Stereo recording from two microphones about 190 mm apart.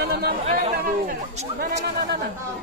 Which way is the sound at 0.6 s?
40° right (ahead or behind).